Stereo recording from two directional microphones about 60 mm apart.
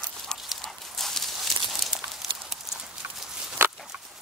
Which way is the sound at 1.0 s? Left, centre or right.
Centre.